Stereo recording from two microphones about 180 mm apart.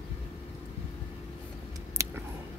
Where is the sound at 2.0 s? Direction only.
15° right (ahead or behind).